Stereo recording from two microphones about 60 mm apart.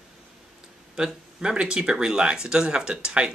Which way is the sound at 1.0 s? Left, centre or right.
Centre.